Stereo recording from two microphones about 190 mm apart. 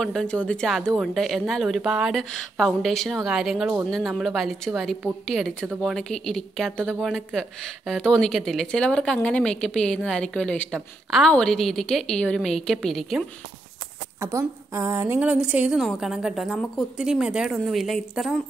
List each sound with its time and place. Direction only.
0.0 s speech: 5° left (ahead or behind)
14.2 s speech: 15° right (ahead or behind)